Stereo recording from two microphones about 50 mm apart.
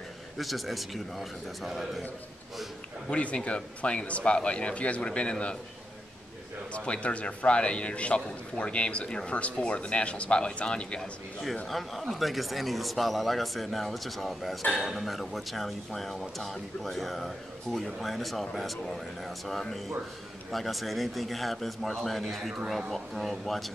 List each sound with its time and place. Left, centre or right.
0.4 s speech: centre
3.1 s a man's voice: left
6.7 s a man's voice: left
11.6 s speech: centre